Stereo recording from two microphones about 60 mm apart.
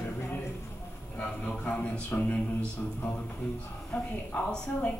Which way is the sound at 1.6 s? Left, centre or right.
Left.